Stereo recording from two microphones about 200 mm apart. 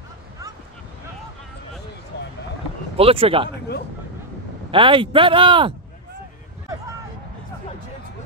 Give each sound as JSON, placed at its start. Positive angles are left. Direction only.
{"t": 2.1, "sound": "a sound", "side_deg": 55}
{"t": 3.0, "sound": "speech", "side_deg": -30}
{"t": 4.6, "sound": "speech", "side_deg": -25}